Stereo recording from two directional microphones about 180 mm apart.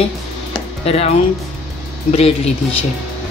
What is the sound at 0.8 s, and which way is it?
Speech, 35° left (ahead or behind).